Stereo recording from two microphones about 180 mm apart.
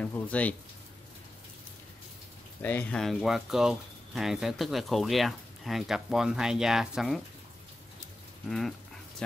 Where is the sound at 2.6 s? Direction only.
10° left (ahead or behind).